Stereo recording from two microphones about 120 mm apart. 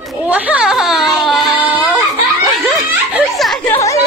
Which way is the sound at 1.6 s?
10° right (ahead or behind).